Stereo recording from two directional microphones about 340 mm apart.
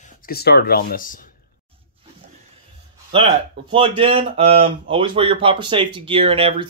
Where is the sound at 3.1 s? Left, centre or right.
Centre.